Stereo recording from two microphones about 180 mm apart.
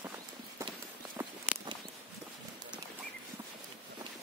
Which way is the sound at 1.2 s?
10° right (ahead or behind).